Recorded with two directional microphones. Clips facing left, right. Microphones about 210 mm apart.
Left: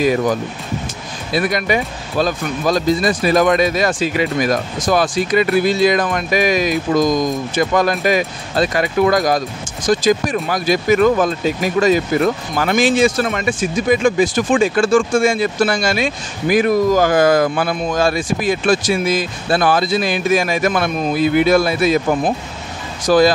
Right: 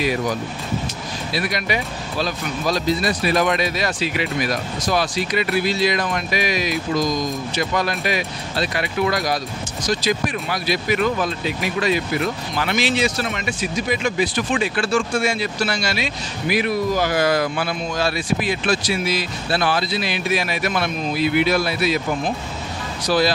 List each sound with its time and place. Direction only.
0.0 s speech: 45° left (ahead or behind)